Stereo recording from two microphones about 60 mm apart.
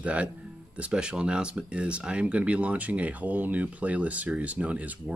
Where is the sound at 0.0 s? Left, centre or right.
Right.